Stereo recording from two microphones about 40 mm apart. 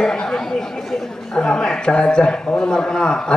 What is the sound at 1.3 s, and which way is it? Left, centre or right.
A man's voice, centre.